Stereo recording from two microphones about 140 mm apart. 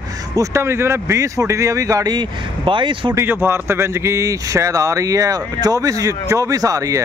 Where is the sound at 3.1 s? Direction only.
15° right (ahead or behind).